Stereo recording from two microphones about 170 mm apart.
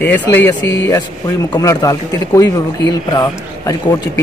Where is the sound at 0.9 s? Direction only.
25° left (ahead or behind).